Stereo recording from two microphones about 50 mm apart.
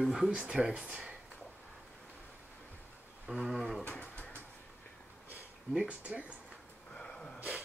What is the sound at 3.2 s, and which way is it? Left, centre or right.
Speech, centre.